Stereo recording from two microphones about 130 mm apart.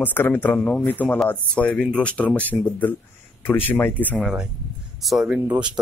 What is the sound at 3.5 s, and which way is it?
Speech, 15° left (ahead or behind).